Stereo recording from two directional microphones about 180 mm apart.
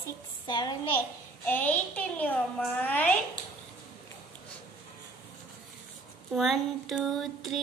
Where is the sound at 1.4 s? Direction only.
10° left (ahead or behind).